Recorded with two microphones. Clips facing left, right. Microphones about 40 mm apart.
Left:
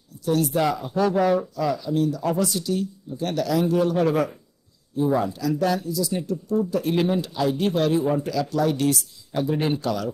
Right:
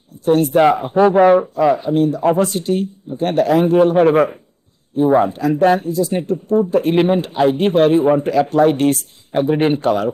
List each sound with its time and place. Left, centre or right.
0.2 s speech: right